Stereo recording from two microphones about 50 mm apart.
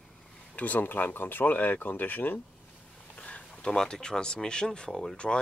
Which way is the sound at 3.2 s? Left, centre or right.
Left.